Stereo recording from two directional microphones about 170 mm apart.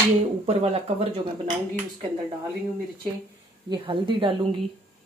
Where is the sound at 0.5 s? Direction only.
35° right (ahead or behind).